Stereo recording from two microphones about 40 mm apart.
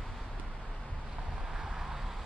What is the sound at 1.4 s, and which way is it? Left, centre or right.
Vehicle, centre.